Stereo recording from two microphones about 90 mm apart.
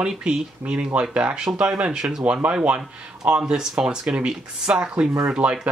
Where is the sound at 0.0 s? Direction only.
10° right (ahead or behind).